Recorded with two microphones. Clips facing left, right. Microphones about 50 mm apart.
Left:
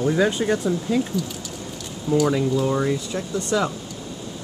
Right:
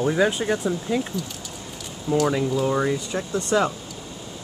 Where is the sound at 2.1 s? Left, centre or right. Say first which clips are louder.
Left 2 dB; centre.